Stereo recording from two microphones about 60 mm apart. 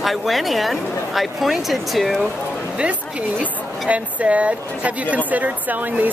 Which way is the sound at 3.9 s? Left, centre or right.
Right.